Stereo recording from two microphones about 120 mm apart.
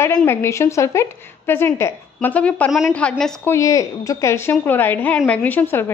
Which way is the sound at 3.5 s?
25° left (ahead or behind).